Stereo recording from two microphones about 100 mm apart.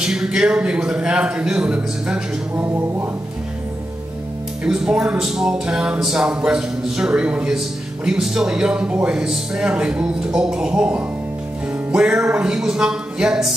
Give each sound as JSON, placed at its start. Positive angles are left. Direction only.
{"t": 0.0, "sound": "a man's voice", "side_deg": -5}
{"t": 2.5, "sound": "a sound", "side_deg": -20}
{"t": 4.6, "sound": "a man's voice", "side_deg": -5}